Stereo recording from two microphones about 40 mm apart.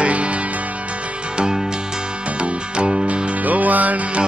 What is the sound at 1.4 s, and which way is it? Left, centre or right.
Music, centre.